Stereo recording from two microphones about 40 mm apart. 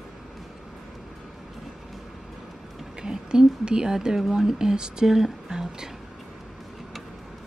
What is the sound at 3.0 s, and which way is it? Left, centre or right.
Speech, centre.